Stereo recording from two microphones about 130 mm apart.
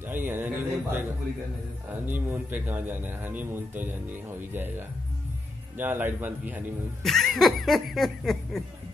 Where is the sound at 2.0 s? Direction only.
15° right (ahead or behind).